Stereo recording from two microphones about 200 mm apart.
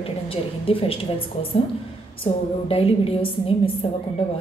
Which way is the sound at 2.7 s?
30° left (ahead or behind).